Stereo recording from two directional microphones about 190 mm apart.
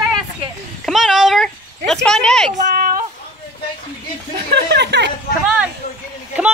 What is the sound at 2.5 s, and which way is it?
Speech, 40° right (ahead or behind).